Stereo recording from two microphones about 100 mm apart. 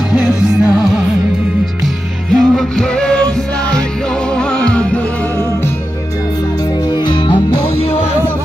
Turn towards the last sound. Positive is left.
turn(degrees=60)  # may be behind; listen again after turning